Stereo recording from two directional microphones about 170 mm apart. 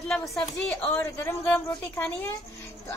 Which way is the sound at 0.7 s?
10° left (ahead or behind).